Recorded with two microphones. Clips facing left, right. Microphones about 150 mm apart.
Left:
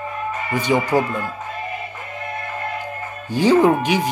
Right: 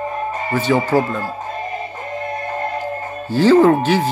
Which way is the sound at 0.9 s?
40° right (ahead or behind).